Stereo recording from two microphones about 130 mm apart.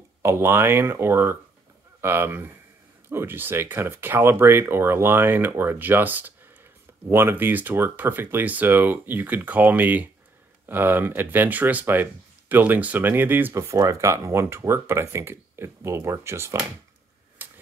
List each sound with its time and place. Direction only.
0.2 s speech: 20° right (ahead or behind)
17.4 s tick-tock: 15° right (ahead or behind)